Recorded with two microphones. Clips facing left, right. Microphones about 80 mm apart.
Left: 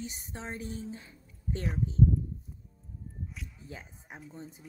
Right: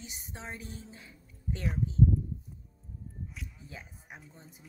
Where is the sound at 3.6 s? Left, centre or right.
Left.